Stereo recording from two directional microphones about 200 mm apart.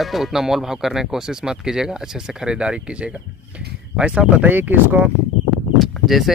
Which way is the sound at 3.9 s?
5° right (ahead or behind).